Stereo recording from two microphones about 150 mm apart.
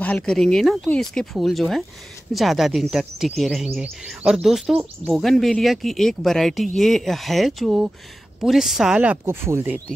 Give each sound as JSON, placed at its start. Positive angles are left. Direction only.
{"t": 0.0, "sound": "speech", "side_deg": 5}